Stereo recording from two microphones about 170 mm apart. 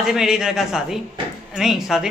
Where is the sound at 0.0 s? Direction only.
5° right (ahead or behind).